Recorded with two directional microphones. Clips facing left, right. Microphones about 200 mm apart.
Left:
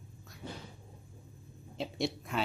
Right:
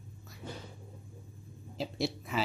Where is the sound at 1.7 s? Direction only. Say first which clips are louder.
Even; centre (ahead or behind).